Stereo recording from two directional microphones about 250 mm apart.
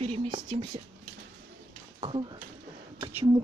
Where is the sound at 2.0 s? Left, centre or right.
Centre.